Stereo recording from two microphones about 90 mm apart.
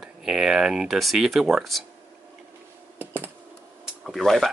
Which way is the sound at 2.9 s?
25° right (ahead or behind).